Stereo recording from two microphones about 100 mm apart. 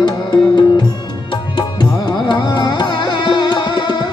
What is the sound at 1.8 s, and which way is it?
Music, 45° left (ahead or behind).